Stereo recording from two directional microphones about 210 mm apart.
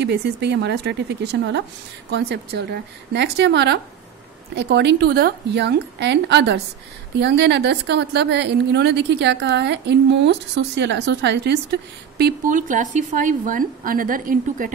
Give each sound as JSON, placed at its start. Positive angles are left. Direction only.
{"t": 0.0, "sound": "a woman's voice", "side_deg": -50}